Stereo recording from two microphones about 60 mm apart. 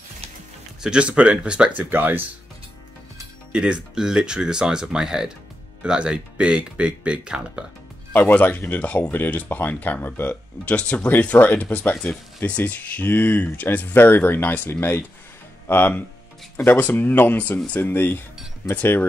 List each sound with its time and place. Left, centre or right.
0.8 s speech: centre
1.8 s speech: right
3.5 s speech: centre
8.1 s speech: left
10.6 s speech: left
16.5 s speech: left